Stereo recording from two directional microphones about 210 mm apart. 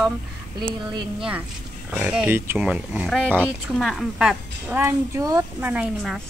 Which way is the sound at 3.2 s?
5° left (ahead or behind).